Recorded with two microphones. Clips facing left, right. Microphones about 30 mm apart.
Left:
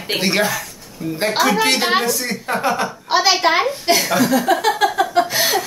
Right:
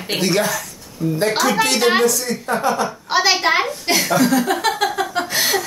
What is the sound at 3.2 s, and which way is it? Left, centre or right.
A woman's voice, centre.